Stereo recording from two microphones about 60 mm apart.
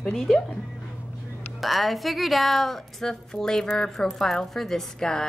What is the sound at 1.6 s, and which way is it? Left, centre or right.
A woman's voice, centre.